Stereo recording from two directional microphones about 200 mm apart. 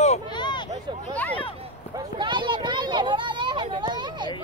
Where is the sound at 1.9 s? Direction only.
25° right (ahead or behind).